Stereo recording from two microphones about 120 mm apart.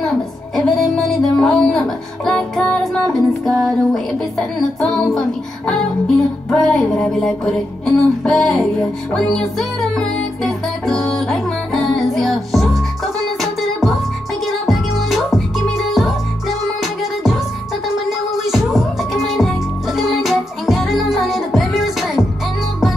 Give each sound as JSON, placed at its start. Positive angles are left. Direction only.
{"t": 0.6, "sound": "music", "side_deg": 0}